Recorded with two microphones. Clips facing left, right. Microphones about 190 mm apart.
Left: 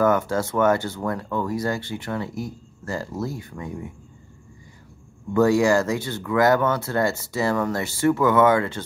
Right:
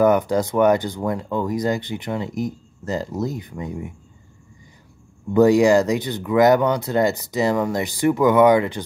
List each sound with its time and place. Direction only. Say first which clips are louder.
0.0 s speech: right 4 dB; 15° right (ahead or behind)
5.3 s speech: right 4 dB; 15° right (ahead or behind)